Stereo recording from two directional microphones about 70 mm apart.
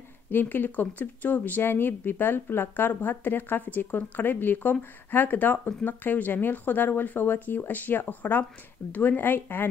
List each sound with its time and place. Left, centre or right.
0.3 s speech: left